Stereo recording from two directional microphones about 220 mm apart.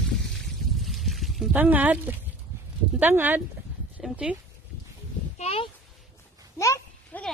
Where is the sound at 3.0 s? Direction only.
10° right (ahead or behind).